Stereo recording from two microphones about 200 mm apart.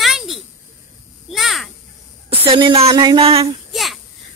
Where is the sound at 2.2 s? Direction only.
25° right (ahead or behind).